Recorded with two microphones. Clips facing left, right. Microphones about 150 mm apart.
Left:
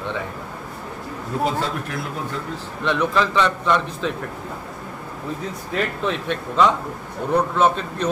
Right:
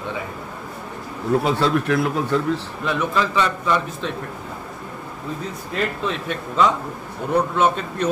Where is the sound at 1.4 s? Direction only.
85° right.